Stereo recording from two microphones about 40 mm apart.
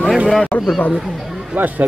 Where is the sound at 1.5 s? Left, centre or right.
Right.